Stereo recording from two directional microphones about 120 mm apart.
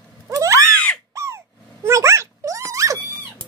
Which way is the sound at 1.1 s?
25° right (ahead or behind).